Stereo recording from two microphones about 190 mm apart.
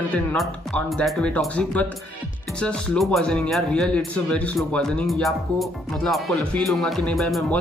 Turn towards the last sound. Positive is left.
turn(degrees=0)  # may be behind; listen again after turning